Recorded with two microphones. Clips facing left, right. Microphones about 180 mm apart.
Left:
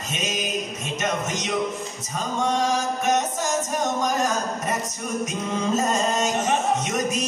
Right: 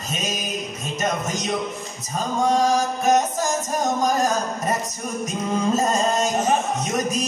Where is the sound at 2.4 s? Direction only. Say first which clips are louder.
Right 4 dB; 35° right (ahead or behind).